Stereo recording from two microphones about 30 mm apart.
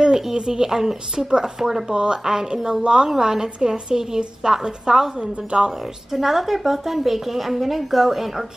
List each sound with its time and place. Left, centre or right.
0.0 s a woman's voice: right
5.5 s a woman's voice: right
6.1 s a woman's voice: centre